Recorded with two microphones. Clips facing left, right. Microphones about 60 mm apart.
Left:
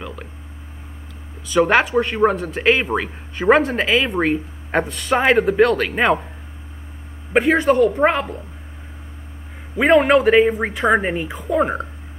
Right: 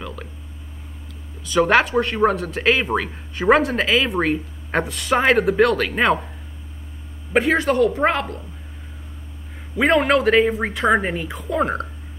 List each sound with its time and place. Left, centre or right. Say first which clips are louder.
0.0 s a sound: left 1 dB; centre
1.4 s speech: left 1 dB; centre
7.3 s speech: left 2 dB; centre
9.8 s a man's voice: left 3 dB; centre